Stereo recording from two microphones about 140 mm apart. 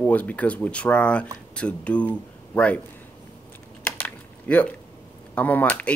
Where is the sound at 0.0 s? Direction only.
10° left (ahead or behind).